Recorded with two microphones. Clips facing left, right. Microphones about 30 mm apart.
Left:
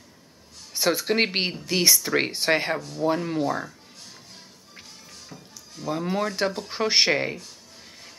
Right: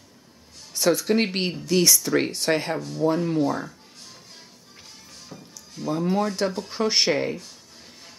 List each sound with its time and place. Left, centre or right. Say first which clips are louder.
0.7 s speech: right 1 dB; centre
5.3 s music: right 3 dB; centre
5.9 s speech: right 2 dB; centre